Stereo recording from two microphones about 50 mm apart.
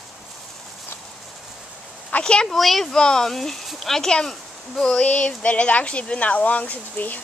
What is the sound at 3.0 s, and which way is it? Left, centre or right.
Speech, centre.